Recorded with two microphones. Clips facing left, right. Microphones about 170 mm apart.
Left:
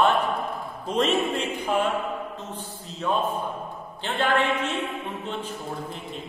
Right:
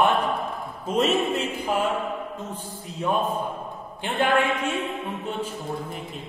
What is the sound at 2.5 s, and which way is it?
Speech, 10° right (ahead or behind).